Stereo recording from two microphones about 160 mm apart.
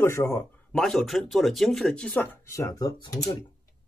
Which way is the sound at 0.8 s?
Centre (ahead or behind).